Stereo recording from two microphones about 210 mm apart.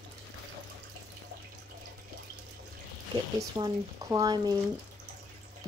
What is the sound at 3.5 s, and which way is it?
Speech, 20° right (ahead or behind).